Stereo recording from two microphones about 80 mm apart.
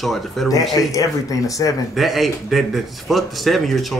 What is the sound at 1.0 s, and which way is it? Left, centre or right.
Speech, left.